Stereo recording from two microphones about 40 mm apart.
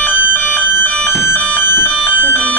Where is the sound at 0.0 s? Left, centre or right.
Left.